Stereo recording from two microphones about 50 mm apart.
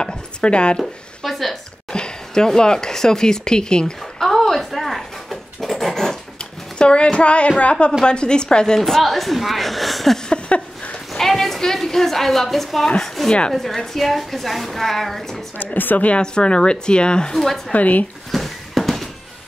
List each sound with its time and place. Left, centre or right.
0.0 s chopping: centre
0.7 s zipper: centre
1.9 s speech: centre
4.3 s dog: centre
6.8 s a sound: centre
8.0 s a woman's voice: centre
10.3 s a sound: left
11.1 s a sound: centre
12.8 s a woman's voice: centre
15.5 s speech: left
16.1 s speech: centre
17.4 s a woman's voice: centre
17.7 s speech: left
18.3 s a sound: centre